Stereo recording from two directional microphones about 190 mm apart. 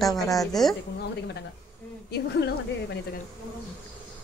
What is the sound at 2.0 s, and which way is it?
Speech, 60° left (ahead or behind).